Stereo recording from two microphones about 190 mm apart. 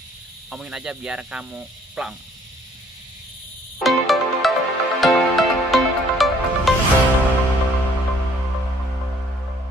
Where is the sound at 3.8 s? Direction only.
Centre (ahead or behind).